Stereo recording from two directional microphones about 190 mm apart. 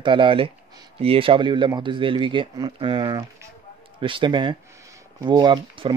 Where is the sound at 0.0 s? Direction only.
25° right (ahead or behind).